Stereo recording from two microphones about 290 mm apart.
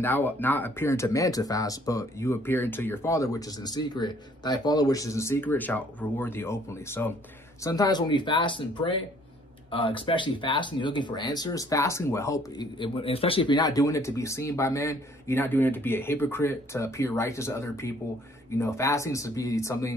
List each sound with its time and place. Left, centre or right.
0.0 s speech: centre